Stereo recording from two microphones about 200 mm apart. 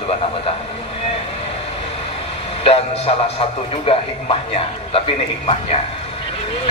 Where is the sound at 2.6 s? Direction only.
30° left (ahead or behind).